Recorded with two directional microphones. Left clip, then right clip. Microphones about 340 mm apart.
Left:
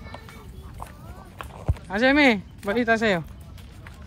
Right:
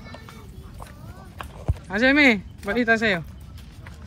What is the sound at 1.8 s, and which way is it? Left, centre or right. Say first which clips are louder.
Speech: right 1 dB; centre.